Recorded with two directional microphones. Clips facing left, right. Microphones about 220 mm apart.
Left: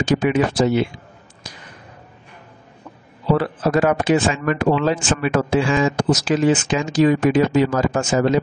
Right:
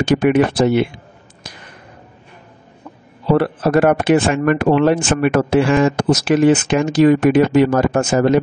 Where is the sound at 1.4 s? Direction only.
60° right (ahead or behind).